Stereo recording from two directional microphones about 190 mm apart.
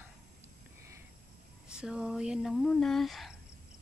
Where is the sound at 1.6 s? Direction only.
5° right (ahead or behind).